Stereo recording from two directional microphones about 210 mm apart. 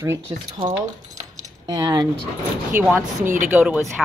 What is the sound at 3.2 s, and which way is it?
Speech, 40° right (ahead or behind).